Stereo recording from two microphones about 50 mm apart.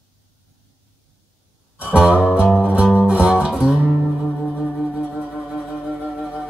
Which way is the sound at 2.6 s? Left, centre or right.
Right.